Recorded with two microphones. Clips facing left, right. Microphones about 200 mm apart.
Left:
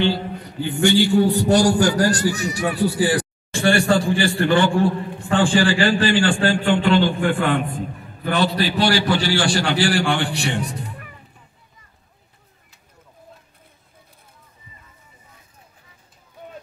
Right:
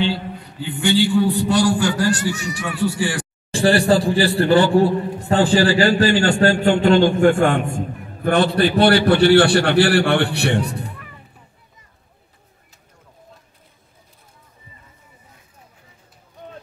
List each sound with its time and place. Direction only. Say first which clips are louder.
0.7 s a man's voice: left 1 dB; 45° left (ahead or behind)
3.5 s a man's voice: right 2 dB; 35° right (ahead or behind); by 10.8 s 60° right (ahead or behind)